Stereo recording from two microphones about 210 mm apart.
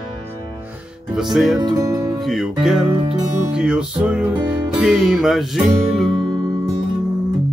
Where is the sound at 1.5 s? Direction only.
15° right (ahead or behind).